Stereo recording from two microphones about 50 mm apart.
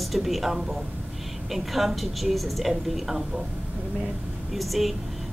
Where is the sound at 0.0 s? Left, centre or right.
Centre.